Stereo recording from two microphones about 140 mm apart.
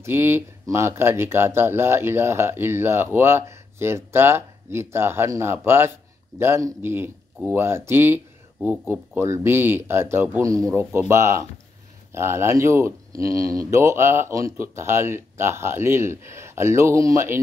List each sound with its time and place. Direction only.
0.0 s speech: 15° right (ahead or behind)